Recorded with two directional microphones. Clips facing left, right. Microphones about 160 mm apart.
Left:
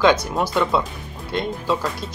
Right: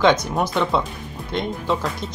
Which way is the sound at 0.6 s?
Centre (ahead or behind).